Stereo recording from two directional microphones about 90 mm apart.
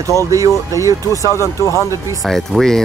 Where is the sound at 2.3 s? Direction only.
5° left (ahead or behind).